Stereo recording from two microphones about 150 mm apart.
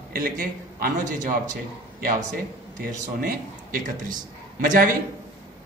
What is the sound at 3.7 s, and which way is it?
A man's voice, 70° right (ahead or behind).